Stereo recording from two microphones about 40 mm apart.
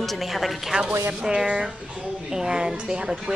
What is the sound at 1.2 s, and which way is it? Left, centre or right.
A woman's voice, centre.